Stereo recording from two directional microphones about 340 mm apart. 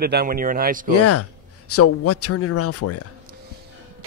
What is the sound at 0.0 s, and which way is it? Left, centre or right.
Speech, right.